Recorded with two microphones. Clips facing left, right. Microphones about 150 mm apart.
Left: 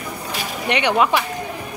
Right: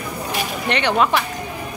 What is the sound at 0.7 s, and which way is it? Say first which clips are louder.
Speech: left 1 dB; 15° left (ahead or behind).